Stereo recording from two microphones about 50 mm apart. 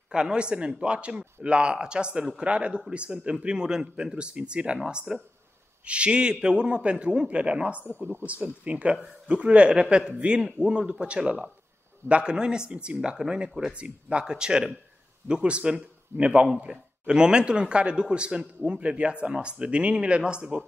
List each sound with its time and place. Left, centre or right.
0.1 s a man's voice: centre